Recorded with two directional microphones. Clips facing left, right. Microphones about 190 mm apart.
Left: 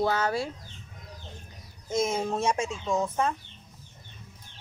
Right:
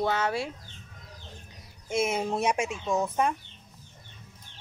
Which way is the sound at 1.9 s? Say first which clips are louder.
Even; 15° right (ahead or behind).